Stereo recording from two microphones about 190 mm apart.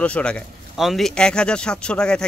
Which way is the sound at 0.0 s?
5° left (ahead or behind).